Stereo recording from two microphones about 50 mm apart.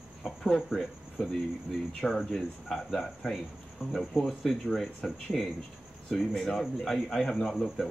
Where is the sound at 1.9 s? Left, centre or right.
Centre.